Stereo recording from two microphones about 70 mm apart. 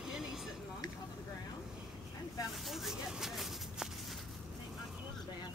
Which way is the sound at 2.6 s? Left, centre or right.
Centre.